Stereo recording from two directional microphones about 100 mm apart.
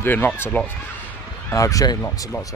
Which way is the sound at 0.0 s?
20° left (ahead or behind).